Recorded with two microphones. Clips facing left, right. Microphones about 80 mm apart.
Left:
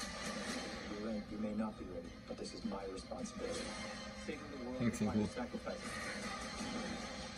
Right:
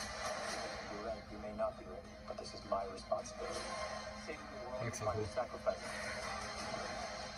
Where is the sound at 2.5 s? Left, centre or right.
Right.